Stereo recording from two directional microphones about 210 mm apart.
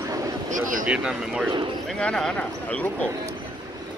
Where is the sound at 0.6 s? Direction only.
40° right (ahead or behind).